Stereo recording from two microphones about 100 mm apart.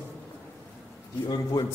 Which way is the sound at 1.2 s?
45° left (ahead or behind).